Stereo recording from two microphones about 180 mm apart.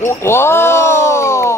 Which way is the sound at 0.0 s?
15° left (ahead or behind).